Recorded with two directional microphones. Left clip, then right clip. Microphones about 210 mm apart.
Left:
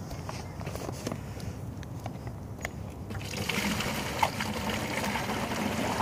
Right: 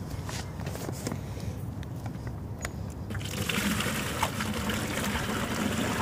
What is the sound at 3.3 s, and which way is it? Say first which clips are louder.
Water: right 1 dB; centre (ahead or behind).